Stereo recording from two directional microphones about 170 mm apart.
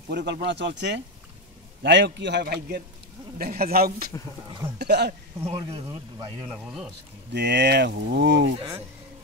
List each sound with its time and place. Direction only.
0.1 s speech: 85° right; by 4.1 s 60° right (ahead or behind)
4.7 s speech: 80° right
5.5 s speech: 30° right (ahead or behind)
6.6 s speech: 5° right (ahead or behind)
7.3 s speech: 90° right